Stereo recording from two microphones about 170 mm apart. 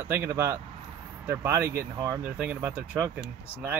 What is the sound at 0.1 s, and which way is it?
Speech, 15° right (ahead or behind).